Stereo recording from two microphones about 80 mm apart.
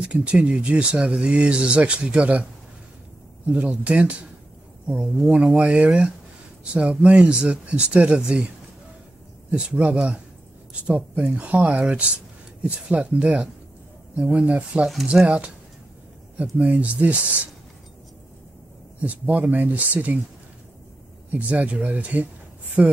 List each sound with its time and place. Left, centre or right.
0.0 s speech: centre
3.4 s speech: centre
9.5 s speech: centre
18.9 s speech: centre
21.3 s speech: centre